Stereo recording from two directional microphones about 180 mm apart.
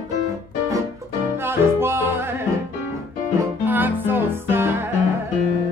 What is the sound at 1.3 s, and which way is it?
Music, 15° right (ahead or behind).